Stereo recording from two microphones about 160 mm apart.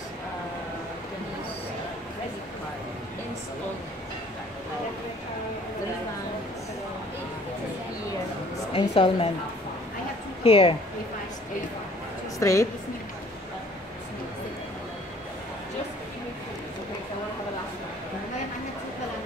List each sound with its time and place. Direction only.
8.7 s a woman's voice: 35° left (ahead or behind)
10.4 s a woman's voice: 35° left (ahead or behind)
12.4 s a woman's voice: 20° left (ahead or behind)